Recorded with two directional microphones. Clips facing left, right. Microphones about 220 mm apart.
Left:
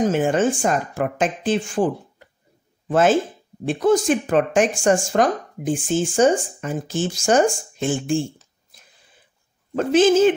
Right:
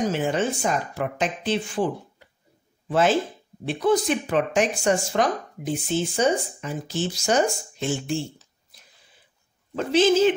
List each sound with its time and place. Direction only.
0.1 s speech: 50° left (ahead or behind)
9.8 s speech: 50° left (ahead or behind)